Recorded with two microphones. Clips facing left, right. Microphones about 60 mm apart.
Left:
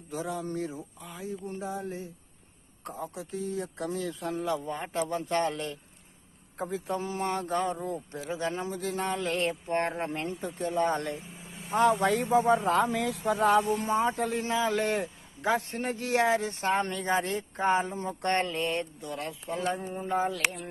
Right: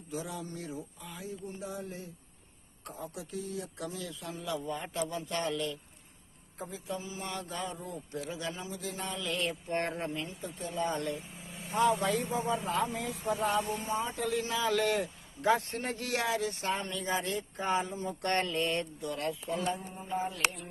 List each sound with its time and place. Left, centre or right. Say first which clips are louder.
0.1 s a man's voice: left 6 dB; left
6.6 s a man's voice: left 7 dB; left
10.6 s a man's voice: left 5 dB; left
14.1 s a man's voice: left 3 dB; left
15.7 s speech: left 5 dB; centre; by 16.7 s left
16.7 s a man's voice: left 6 dB; left
18.3 s speech: left 2 dB; left
19.6 s speech: left 4 dB; left